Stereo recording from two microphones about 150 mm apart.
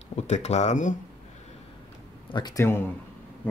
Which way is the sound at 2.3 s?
30° left (ahead or behind).